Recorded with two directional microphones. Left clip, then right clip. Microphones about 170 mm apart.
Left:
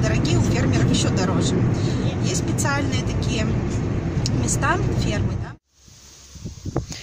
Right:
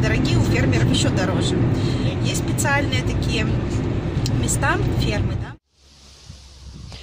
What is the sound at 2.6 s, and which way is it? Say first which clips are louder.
Speech: right 5 dB; 10° left (ahead or behind).